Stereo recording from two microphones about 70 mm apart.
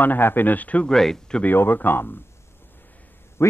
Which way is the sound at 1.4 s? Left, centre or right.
Left.